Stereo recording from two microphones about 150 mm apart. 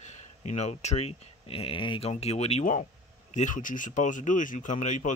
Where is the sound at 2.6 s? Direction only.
55° left (ahead or behind).